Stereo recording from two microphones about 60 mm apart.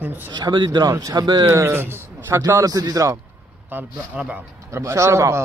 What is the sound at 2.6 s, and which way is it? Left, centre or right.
Speech, right.